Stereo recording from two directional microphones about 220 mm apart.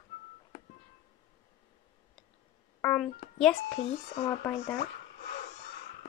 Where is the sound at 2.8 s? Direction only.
5° left (ahead or behind).